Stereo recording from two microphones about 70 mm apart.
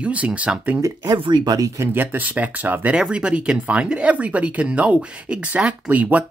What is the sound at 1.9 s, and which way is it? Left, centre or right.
Speech, right.